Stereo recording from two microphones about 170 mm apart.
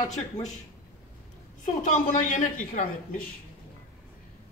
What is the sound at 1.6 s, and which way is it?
A woman's voice, 50° left (ahead or behind).